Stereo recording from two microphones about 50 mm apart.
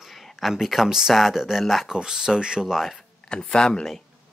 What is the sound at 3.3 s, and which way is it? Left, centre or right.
Speech, centre.